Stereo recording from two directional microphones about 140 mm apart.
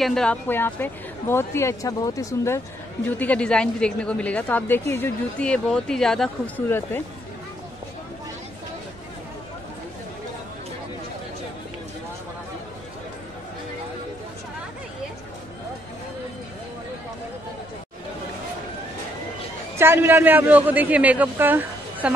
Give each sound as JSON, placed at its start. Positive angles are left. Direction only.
{"t": 0.0, "sound": "a woman's voice", "side_deg": 5}
{"t": 3.1, "sound": "a woman's voice", "side_deg": 10}
{"t": 19.8, "sound": "a man's voice", "side_deg": -15}